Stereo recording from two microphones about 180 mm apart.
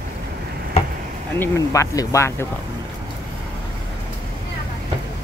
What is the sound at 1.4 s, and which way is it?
Speech, 15° left (ahead or behind).